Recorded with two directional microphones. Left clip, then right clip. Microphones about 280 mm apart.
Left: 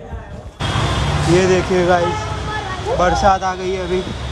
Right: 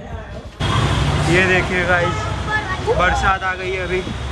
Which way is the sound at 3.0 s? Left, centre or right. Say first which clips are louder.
Left 4 dB; centre.